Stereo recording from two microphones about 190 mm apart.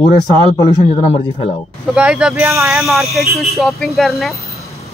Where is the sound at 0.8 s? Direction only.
30° left (ahead or behind).